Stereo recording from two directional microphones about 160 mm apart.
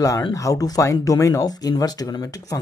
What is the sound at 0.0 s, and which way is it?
Speech, 20° left (ahead or behind).